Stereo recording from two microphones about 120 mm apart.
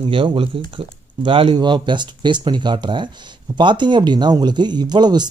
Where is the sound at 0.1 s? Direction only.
45° right (ahead or behind).